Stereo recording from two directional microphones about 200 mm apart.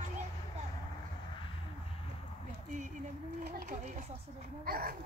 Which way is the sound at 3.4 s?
50° right (ahead or behind).